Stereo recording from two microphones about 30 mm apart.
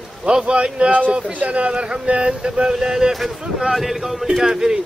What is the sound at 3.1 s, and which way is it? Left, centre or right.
Speech, centre.